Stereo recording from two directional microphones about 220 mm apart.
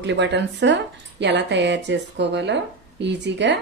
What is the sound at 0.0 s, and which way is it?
Speech, 50° right (ahead or behind).